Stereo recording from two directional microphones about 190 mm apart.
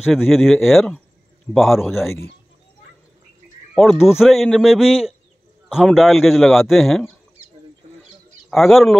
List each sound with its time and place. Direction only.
0.0 s a man's voice: centre (ahead or behind)
3.7 s a man's voice: centre (ahead or behind)
8.5 s speech: centre (ahead or behind)